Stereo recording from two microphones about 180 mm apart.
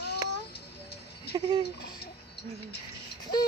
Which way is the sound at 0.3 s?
65° left (ahead or behind).